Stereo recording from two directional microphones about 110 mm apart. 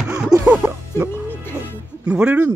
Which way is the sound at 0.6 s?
20° right (ahead or behind).